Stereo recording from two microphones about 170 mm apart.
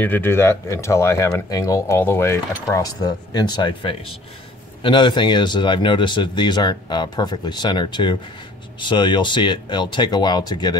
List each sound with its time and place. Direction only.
0.0 s speech: 10° left (ahead or behind)